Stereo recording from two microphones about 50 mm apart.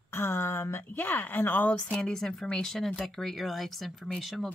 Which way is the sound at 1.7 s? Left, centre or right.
Left.